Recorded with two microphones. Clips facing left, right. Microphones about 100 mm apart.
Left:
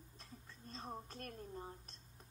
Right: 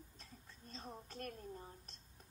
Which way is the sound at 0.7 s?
40° left (ahead or behind).